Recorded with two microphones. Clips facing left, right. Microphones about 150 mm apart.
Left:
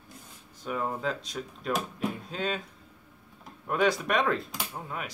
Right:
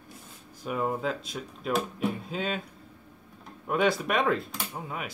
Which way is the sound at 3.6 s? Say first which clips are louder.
Right 1 dB; centre (ahead or behind).